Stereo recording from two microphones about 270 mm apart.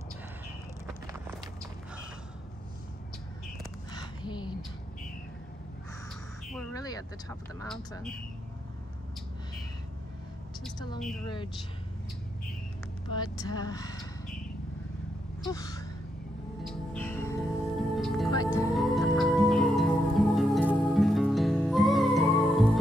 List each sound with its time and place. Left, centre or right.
3.9 s a sound: centre
6.7 s speech: centre
11.2 s speech: centre
13.1 s speech: centre
15.4 s gasp: centre
16.6 s music: centre
18.3 s music: centre
18.7 s music: centre